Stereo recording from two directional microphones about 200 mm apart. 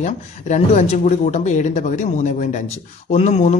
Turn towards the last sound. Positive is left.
turn(degrees=35)  # may be behind; listen again after turning